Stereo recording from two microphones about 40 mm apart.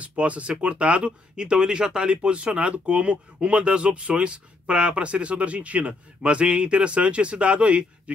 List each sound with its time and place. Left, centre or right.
0.0 s speech: right